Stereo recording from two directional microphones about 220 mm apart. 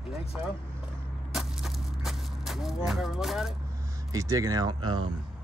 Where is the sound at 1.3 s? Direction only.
Centre (ahead or behind).